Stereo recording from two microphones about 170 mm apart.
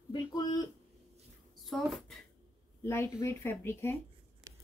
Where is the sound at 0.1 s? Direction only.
25° left (ahead or behind).